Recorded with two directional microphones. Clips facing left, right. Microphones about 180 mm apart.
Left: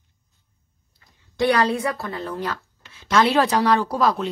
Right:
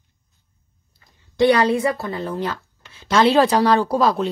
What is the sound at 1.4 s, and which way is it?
A woman's voice, 25° right (ahead or behind).